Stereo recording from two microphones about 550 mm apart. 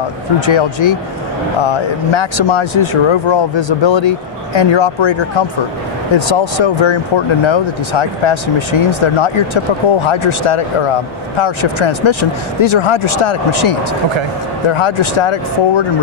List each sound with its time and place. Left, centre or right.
0.5 s speech: left
6.1 s speech: left